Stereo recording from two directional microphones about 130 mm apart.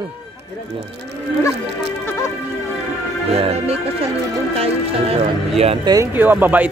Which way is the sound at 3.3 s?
50° right (ahead or behind).